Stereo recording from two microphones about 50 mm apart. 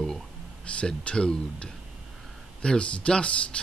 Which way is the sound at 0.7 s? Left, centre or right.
Left.